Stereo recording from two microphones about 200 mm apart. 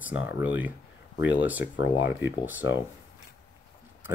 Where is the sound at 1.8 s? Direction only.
70° left (ahead or behind).